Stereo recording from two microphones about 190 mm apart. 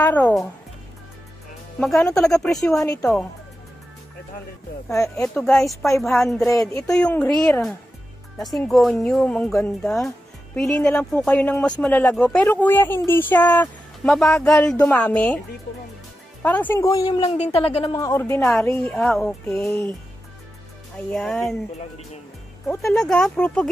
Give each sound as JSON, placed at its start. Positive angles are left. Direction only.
{"t": 0.0, "sound": "speech", "side_deg": 10}
{"t": 2.0, "sound": "speech", "side_deg": 0}
{"t": 4.9, "sound": "speech", "side_deg": 15}
{"t": 6.0, "sound": "speech", "side_deg": 0}
{"t": 6.4, "sound": "speech", "side_deg": 15}
{"t": 7.0, "sound": "speech", "side_deg": 5}
{"t": 16.4, "sound": "speech", "side_deg": 10}
{"t": 17.3, "sound": "speech", "side_deg": 30}
{"t": 17.9, "sound": "speech", "side_deg": 15}
{"t": 20.9, "sound": "speech", "side_deg": 5}
{"t": 22.8, "sound": "speech", "side_deg": 0}